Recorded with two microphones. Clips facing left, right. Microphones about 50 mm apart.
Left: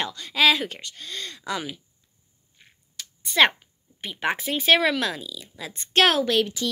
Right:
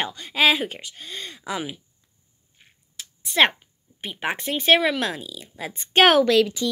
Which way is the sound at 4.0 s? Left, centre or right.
Centre.